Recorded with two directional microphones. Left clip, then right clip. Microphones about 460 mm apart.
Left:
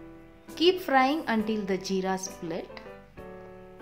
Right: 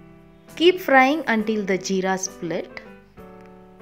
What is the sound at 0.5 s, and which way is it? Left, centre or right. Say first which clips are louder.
A woman's voice: right 7 dB; centre.